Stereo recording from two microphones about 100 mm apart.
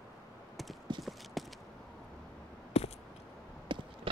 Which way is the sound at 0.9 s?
50° right (ahead or behind).